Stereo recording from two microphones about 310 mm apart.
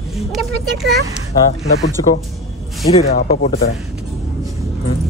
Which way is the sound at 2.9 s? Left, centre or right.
Left.